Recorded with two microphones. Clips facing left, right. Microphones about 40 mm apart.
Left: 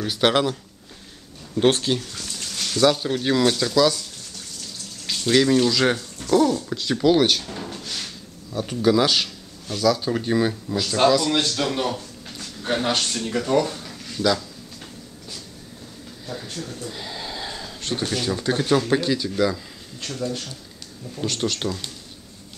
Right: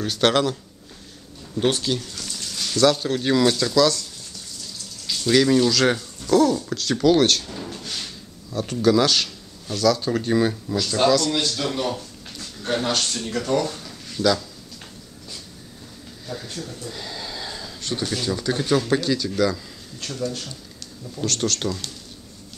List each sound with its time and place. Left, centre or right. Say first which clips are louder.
0.0 s speech: even; centre
1.6 s speech: left 3 dB; left
2.0 s a sound: even; left
2.7 s speech: right 1 dB; centre
5.3 s speech: even; centre
11.0 s speech: left 1 dB; centre
11.9 s a sound: even; centre
13.3 s speech: left 2 dB; centre
16.3 s speech: even; centre
16.6 s a sound: left 1 dB; centre
18.0 s speech: left 1 dB; centre